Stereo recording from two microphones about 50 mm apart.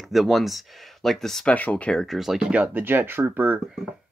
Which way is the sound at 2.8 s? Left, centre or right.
Right.